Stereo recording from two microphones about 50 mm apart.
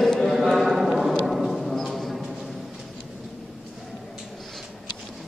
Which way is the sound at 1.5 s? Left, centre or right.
Centre.